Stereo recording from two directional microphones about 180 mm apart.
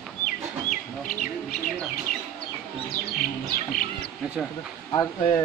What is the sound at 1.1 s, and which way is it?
Speech, 50° left (ahead or behind).